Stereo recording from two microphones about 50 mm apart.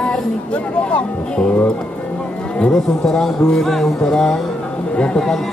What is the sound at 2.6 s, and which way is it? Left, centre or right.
Speech, centre.